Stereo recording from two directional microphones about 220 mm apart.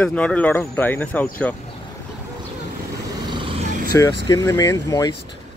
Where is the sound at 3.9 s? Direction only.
15° left (ahead or behind).